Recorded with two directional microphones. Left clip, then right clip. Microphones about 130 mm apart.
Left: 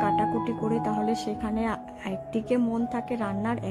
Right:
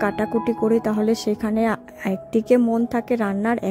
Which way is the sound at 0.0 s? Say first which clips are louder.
Right 3 dB; 50° right (ahead or behind).